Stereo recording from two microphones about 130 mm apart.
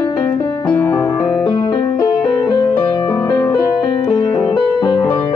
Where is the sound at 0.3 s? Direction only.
40° left (ahead or behind).